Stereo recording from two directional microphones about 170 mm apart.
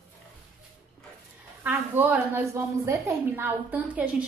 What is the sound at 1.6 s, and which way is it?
A woman's voice, 10° right (ahead or behind).